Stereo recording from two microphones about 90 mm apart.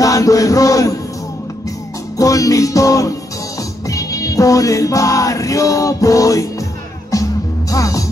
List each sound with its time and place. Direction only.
0.0 s music: 40° left (ahead or behind)
2.1 s music: 40° left (ahead or behind)
7.7 s music: 40° left (ahead or behind)